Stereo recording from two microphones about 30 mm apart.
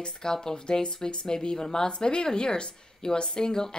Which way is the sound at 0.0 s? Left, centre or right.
Left.